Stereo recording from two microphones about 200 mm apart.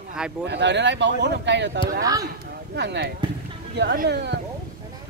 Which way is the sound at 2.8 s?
55° right (ahead or behind).